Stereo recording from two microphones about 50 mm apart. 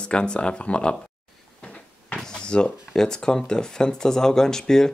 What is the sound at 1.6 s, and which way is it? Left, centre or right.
Cupboard open or close, left.